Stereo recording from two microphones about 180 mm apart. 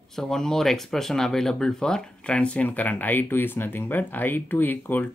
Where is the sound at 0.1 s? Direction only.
Centre (ahead or behind).